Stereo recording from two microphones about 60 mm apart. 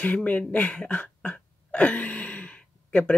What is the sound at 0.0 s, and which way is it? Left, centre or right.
Speech, left.